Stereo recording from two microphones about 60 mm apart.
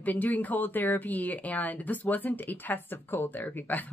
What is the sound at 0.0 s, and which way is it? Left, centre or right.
Speech, left.